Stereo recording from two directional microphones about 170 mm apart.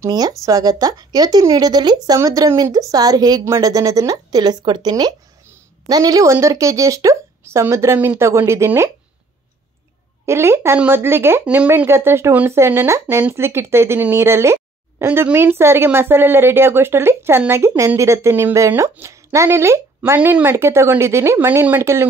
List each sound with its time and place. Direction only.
0.0 s speech: 20° right (ahead or behind)
10.2 s speech: 15° right (ahead or behind)